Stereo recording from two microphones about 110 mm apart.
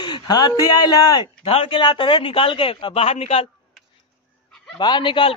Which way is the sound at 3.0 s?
70° left (ahead or behind).